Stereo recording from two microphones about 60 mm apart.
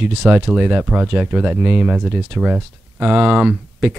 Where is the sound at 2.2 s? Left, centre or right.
Right.